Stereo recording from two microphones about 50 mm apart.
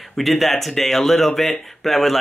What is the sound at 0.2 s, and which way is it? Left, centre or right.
Speech, centre.